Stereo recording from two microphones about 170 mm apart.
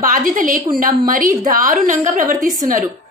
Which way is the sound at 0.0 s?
50° right (ahead or behind).